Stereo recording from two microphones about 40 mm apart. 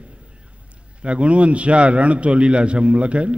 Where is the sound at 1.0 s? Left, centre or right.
Right.